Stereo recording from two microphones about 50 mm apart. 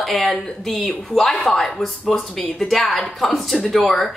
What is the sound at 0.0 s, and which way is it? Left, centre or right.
Speech, centre.